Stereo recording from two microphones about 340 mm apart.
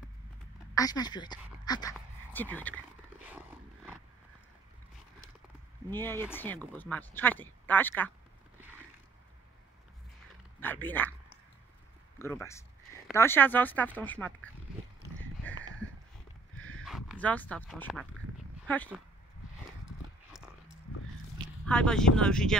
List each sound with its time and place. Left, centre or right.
0.7 s speech: centre
2.0 s a sound: centre
5.9 s speech: centre
10.6 s speech: centre
12.2 s speech: centre
15.5 s a sound: centre
16.8 s speech: centre
21.6 s speech: centre